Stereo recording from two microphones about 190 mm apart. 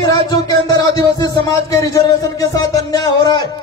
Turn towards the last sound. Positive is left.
turn(degrees=20)  # may be behind; listen again after turning